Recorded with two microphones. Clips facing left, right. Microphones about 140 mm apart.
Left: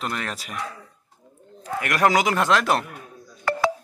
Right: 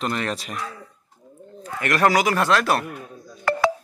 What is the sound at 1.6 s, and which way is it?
A man's voice, 10° left (ahead or behind).